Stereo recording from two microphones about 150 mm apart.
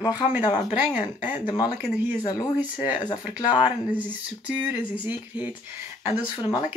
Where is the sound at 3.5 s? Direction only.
10° right (ahead or behind).